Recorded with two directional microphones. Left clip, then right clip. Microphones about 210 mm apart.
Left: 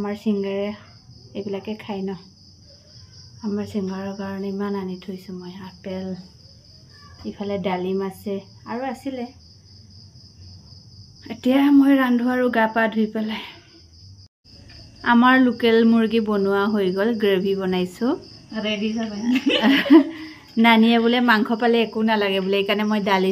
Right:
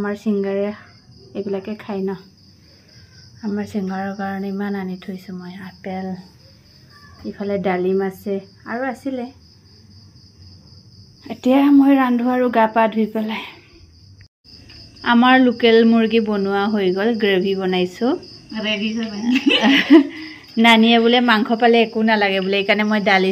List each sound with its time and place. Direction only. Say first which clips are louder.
0.0 s speech: right 3 dB; 10° right (ahead or behind)
3.4 s speech: right 2 dB; 10° right (ahead or behind)
7.3 s speech: right 4 dB; 10° right (ahead or behind)
11.2 s speech: right 3 dB; 5° right (ahead or behind)
15.0 s speech: right 2 dB; 5° left (ahead or behind)
18.5 s speech: right 3 dB; 30° left (ahead or behind)
19.6 s speech: right 1 dB; centre (ahead or behind)